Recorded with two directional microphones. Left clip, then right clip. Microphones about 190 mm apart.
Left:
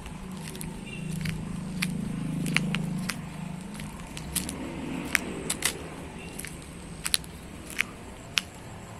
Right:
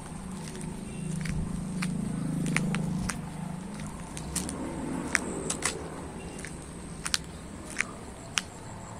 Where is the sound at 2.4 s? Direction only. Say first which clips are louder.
Left 3 dB; 5° right (ahead or behind).